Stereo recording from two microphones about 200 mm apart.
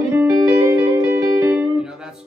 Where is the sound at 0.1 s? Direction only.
15° right (ahead or behind).